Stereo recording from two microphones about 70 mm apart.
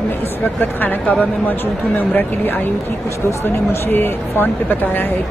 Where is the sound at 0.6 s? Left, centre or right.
Left.